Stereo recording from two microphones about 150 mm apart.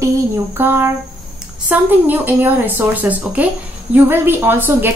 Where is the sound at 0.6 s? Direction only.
15° right (ahead or behind).